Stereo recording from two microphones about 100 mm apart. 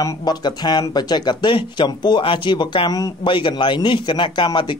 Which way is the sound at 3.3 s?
55° left (ahead or behind).